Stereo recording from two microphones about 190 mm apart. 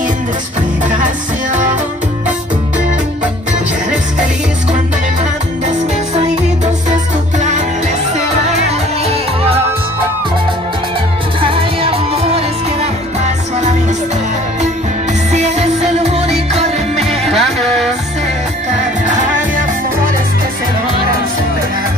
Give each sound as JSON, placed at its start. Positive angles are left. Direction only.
{"t": 0.8, "sound": "music", "side_deg": -40}
{"t": 11.4, "sound": "music", "side_deg": -30}
{"t": 15.3, "sound": "music", "side_deg": -35}